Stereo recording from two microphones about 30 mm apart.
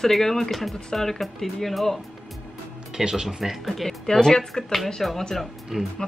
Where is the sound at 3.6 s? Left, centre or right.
Centre.